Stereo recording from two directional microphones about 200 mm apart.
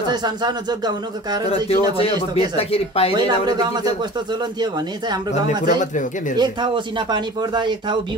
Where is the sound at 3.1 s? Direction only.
20° right (ahead or behind).